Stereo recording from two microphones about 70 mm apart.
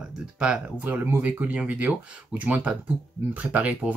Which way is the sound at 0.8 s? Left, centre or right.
Right.